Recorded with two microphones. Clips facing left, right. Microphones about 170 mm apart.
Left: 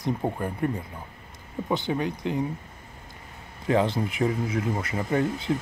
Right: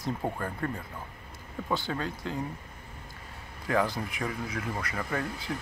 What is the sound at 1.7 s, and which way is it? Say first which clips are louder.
Speech: left 5 dB; 20° left (ahead or behind).